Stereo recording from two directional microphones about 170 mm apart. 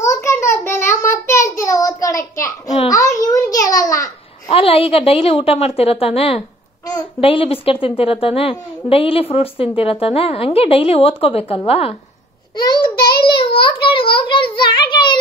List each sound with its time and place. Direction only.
0.0 s a sound: 15° left (ahead or behind)
4.5 s a woman's voice: 35° left (ahead or behind)
12.9 s a child's voice: 65° left (ahead or behind)
13.4 s a child's voice: 30° left (ahead or behind)